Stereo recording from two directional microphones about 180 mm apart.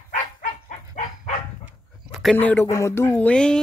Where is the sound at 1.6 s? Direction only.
Centre (ahead or behind).